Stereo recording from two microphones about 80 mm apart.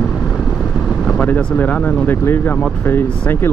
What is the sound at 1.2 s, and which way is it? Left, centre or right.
Speech, centre.